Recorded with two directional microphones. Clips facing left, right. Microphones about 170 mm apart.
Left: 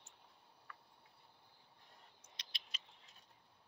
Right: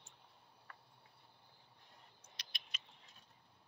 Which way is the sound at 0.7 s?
45° right (ahead or behind).